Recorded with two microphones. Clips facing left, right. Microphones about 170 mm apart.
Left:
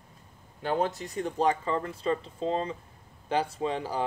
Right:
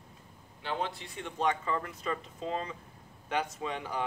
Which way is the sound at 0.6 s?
45° left (ahead or behind).